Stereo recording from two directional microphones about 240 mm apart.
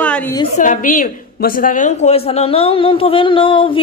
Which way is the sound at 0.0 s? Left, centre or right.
Centre.